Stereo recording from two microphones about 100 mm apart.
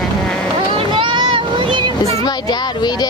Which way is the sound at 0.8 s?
55° right (ahead or behind).